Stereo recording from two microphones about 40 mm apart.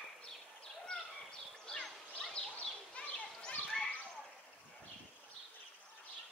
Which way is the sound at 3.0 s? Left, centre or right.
Left.